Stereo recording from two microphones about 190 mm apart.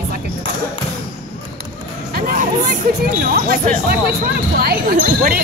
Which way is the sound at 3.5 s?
45° right (ahead or behind).